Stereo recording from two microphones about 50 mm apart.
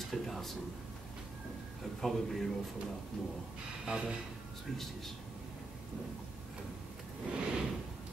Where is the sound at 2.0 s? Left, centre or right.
Centre.